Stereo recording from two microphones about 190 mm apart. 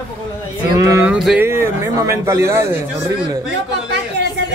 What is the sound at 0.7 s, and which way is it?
Speech, 15° right (ahead or behind).